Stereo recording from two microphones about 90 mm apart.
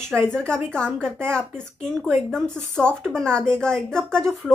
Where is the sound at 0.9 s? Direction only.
25° right (ahead or behind).